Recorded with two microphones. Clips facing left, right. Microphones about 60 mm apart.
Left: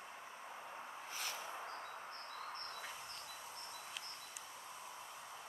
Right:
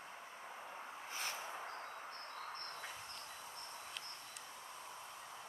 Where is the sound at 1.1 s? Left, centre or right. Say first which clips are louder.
Right 2 dB; right.